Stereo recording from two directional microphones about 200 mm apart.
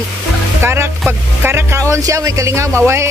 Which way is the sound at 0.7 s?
10° right (ahead or behind).